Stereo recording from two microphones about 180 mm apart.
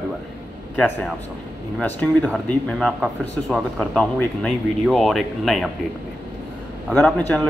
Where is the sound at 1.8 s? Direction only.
10° left (ahead or behind).